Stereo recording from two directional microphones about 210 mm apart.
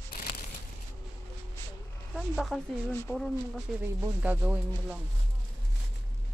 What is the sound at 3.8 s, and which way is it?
Speech, 10° right (ahead or behind).